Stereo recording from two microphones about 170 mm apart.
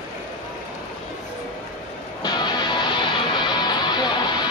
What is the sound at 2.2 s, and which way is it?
Music, 25° left (ahead or behind).